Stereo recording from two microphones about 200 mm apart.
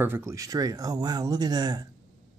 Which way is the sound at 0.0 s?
10° right (ahead or behind).